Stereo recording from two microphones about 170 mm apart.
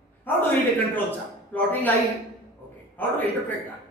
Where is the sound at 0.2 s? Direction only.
10° left (ahead or behind).